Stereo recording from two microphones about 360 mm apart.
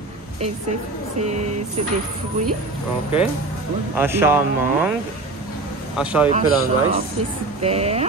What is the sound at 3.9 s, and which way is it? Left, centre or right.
Speech, centre.